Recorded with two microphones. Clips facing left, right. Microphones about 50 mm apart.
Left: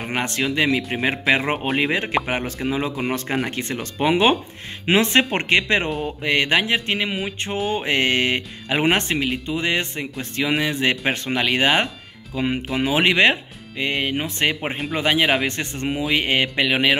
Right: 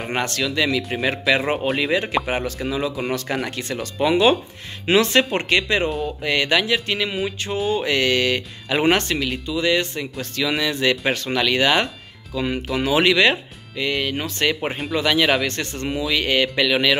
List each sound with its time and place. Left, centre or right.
0.1 s speech: left
1.8 s speech: left